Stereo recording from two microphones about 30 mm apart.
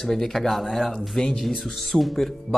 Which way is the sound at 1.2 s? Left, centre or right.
Left.